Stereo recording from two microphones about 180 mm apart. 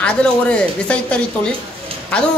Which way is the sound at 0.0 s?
5° left (ahead or behind).